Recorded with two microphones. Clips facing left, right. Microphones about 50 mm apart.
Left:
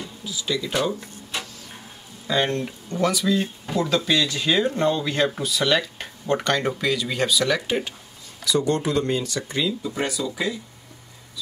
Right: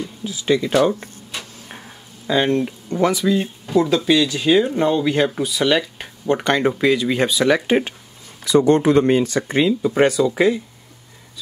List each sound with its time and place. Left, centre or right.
0.2 s speech: right
2.2 s speech: centre; by 10.6 s right